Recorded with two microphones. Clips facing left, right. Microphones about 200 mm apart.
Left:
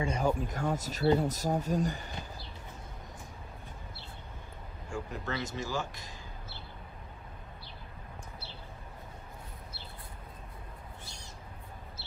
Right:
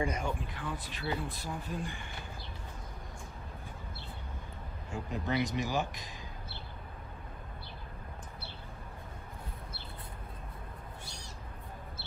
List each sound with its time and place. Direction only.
0.1 s speech: 40° left (ahead or behind)
5.1 s speech: 15° right (ahead or behind)